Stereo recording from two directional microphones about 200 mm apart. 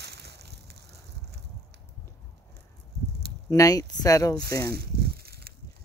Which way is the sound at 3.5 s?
15° left (ahead or behind).